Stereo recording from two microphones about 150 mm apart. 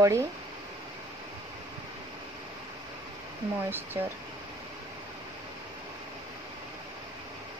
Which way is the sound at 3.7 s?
15° right (ahead or behind).